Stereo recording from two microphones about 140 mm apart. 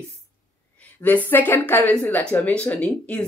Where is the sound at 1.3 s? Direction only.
10° left (ahead or behind).